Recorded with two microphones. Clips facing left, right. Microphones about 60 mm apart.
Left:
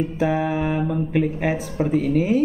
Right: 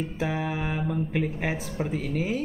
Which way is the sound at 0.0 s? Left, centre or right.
Centre.